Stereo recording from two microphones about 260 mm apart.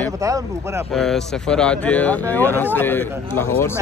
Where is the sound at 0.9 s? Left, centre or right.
Centre.